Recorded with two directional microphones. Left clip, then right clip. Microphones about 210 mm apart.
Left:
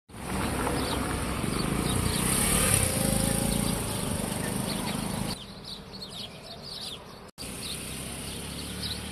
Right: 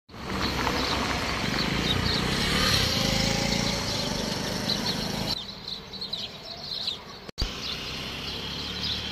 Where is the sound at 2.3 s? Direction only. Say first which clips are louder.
Right 4 dB; 40° left (ahead or behind); by 3.5 s 60° left (ahead or behind).